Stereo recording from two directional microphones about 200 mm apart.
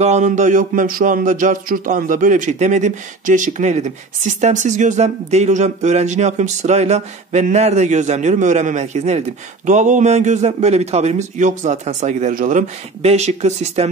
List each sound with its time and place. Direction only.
0.0 s speech: 35° right (ahead or behind)